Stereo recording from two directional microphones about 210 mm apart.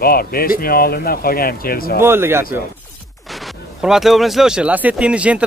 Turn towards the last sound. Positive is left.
turn(degrees=-5)  # may be behind; listen again after turning